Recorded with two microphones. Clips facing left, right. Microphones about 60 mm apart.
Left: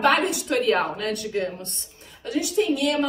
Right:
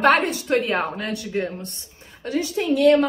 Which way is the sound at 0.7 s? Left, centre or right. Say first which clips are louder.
Left 2 dB; right.